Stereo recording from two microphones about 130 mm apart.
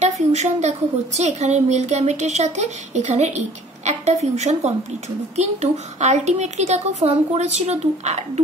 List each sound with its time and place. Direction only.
0.0 s a woman's voice: 60° right (ahead or behind)